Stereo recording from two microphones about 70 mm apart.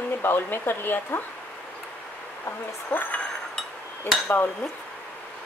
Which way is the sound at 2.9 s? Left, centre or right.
Left.